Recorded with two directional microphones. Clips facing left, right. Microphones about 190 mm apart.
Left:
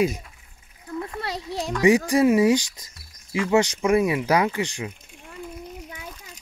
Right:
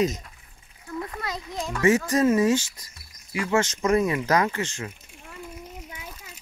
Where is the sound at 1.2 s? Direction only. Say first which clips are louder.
Left 3 dB; 35° left (ahead or behind).